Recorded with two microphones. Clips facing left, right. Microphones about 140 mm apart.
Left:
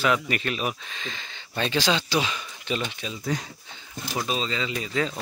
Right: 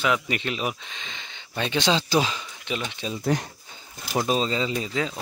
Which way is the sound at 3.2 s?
60° right (ahead or behind).